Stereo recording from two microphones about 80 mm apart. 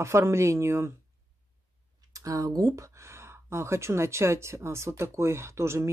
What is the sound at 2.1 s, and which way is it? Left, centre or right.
Speech, right.